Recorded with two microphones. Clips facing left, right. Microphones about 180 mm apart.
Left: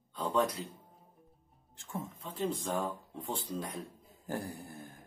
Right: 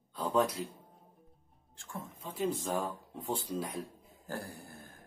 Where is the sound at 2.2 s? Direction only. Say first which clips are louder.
Right 2 dB; 5° right (ahead or behind).